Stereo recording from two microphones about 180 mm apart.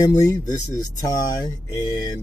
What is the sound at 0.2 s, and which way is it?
Speech, 20° left (ahead or behind).